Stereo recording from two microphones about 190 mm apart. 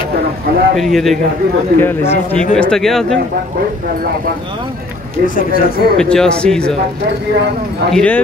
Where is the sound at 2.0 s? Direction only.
40° left (ahead or behind).